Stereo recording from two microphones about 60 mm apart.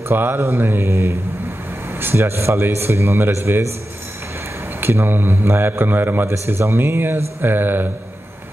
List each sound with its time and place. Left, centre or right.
0.1 s speech: right
4.7 s speech: right
6.2 s speech: right